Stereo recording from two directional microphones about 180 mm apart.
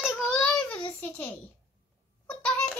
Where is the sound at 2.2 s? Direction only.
5° left (ahead or behind).